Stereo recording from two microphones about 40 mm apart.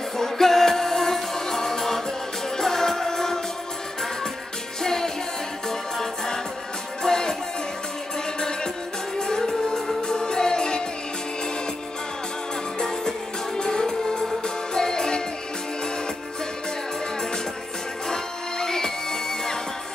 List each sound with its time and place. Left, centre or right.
0.2 s music: centre
4.8 s music: centre
9.2 s music: centre
12.7 s music: centre
18.0 s music: centre